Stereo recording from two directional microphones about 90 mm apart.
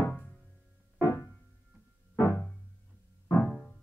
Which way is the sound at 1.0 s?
30° left (ahead or behind).